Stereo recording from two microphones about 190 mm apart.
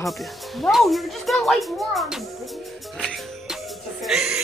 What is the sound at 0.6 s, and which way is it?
A child's voice, centre (ahead or behind).